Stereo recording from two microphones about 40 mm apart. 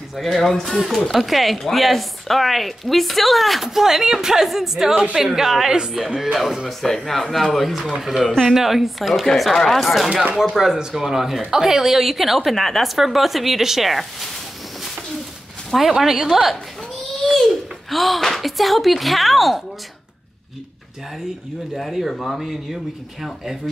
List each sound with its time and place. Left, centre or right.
0.1 s speech: centre
3.6 s a woman's voice: centre
6.8 s speech: centre
10.6 s a woman's voice: centre
15.7 s a woman's voice: centre
22.1 s speech: centre